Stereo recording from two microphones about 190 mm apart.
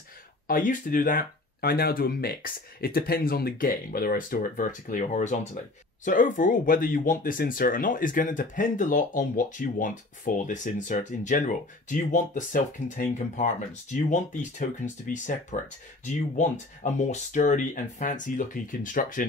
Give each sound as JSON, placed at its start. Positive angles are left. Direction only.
{"t": 0.5, "sound": "speech", "side_deg": 45}
{"t": 15.5, "sound": "speech", "side_deg": 40}